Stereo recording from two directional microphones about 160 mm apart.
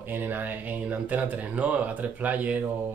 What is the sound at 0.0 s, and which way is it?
Speech, 10° right (ahead or behind).